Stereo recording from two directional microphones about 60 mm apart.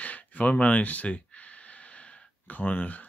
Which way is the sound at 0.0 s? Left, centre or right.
Left.